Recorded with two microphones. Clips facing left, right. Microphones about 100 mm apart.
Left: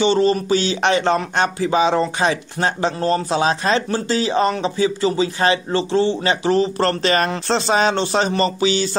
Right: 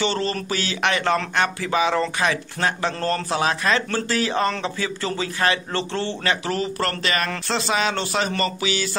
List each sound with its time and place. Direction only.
0.0 s a man's voice: 20° left (ahead or behind)